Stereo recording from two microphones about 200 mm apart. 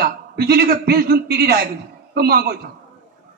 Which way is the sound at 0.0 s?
50° right (ahead or behind).